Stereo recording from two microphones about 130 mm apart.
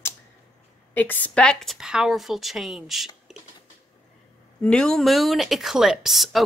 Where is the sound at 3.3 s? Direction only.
Centre (ahead or behind).